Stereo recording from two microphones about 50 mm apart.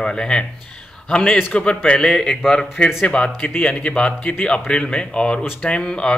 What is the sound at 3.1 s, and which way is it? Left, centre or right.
A man's voice, left.